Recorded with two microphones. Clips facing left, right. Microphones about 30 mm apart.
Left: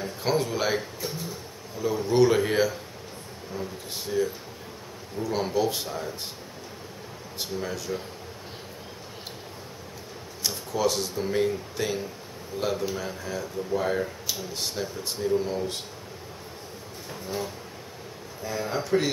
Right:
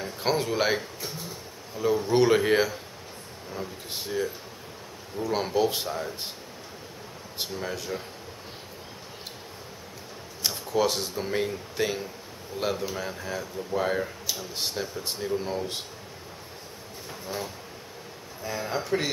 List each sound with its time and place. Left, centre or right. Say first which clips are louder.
0.0 s speech: left 1 dB; centre
1.8 s speech: even; centre
7.3 s speech: left 1 dB; centre
10.5 s speech: right 1 dB; centre
18.4 s speech: left 1 dB; centre